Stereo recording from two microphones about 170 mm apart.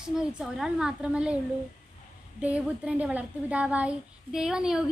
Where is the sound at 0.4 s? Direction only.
5° right (ahead or behind).